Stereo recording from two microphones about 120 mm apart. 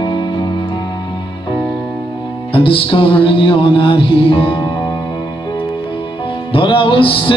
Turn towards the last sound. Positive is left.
turn(degrees=45)  # may be behind; listen again after turning